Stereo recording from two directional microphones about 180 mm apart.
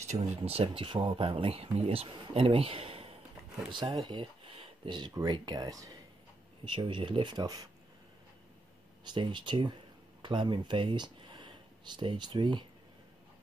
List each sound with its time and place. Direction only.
0.1 s speech: 35° right (ahead or behind)
9.0 s speech: 25° right (ahead or behind)